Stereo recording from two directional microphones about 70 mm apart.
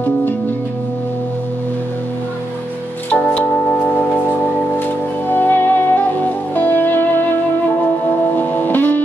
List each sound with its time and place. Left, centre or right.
3.1 s organ: centre
5.3 s music: left